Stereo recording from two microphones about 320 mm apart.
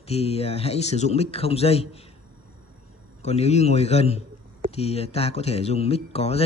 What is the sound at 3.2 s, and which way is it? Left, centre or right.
A man's voice, centre.